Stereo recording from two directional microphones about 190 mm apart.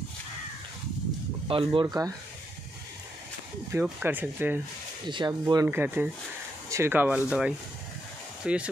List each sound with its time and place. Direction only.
1.5 s speech: 30° right (ahead or behind)
3.7 s speech: 10° right (ahead or behind)
5.0 s speech: 25° right (ahead or behind); by 8.6 s 5° right (ahead or behind)